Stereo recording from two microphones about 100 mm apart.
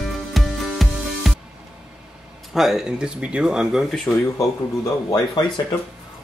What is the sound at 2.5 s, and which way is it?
Speech, centre (ahead or behind).